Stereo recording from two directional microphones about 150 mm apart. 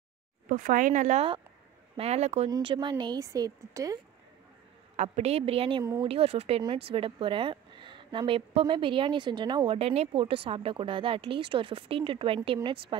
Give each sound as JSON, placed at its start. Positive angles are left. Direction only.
{"t": 0.5, "sound": "speech", "side_deg": -60}
{"t": 2.5, "sound": "speech", "side_deg": -30}
{"t": 4.9, "sound": "speech", "side_deg": -50}